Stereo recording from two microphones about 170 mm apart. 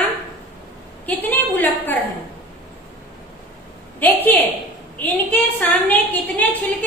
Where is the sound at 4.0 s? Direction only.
10° left (ahead or behind).